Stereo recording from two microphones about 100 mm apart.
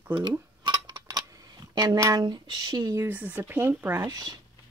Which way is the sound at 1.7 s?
35° right (ahead or behind).